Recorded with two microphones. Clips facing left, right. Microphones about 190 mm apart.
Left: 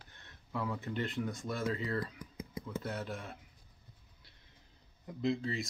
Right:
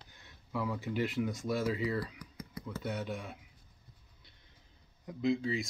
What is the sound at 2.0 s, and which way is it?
Typing, 20° left (ahead or behind).